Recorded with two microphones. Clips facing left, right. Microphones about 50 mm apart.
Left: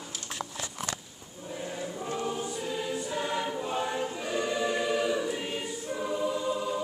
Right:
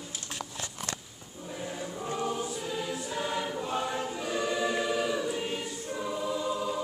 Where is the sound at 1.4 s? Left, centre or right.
Centre.